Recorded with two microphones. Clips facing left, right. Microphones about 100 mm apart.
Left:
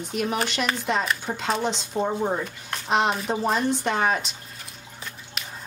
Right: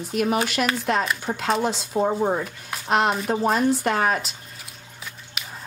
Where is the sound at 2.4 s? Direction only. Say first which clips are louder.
Right 1 dB; 5° right (ahead or behind).